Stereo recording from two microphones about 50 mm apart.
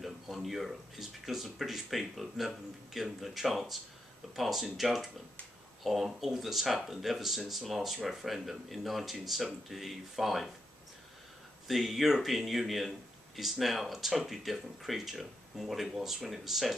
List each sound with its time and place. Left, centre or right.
0.0 s speech: centre
11.6 s speech: centre